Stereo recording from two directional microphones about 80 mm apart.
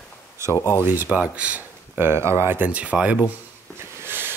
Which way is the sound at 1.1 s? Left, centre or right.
Centre.